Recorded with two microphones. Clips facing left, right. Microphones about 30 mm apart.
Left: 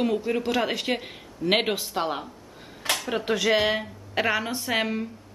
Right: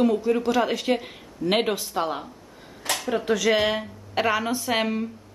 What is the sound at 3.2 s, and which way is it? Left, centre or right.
Speech, left.